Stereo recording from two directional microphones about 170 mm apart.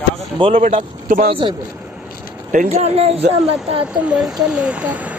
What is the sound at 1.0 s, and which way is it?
Speech, 55° right (ahead or behind).